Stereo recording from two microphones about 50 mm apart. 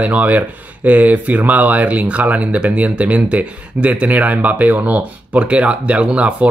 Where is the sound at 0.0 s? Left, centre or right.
Right.